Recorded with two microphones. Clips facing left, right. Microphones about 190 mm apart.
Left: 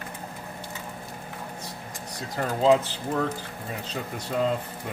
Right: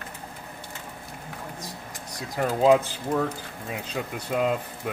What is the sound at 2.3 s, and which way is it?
Speech, 10° right (ahead or behind).